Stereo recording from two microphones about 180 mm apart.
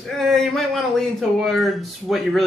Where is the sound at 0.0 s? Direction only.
Centre (ahead or behind).